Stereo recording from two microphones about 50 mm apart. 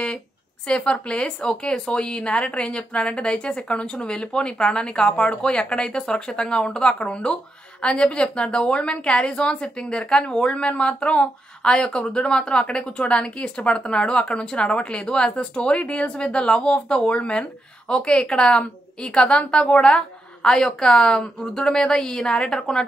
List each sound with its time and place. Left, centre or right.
0.7 s a woman's voice: left